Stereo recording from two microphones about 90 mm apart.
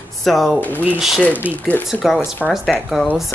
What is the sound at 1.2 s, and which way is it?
Speech, 20° left (ahead or behind).